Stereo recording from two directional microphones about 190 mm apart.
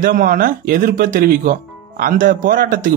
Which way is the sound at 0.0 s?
45° right (ahead or behind).